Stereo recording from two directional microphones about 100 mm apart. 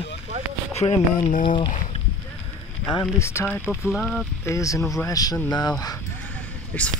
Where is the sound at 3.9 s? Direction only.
Centre (ahead or behind).